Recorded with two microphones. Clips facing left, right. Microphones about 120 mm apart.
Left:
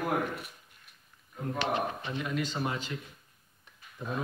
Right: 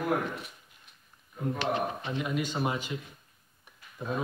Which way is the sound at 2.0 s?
15° right (ahead or behind).